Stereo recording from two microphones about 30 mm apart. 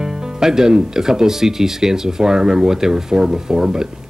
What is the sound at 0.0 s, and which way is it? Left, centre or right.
Speech, right.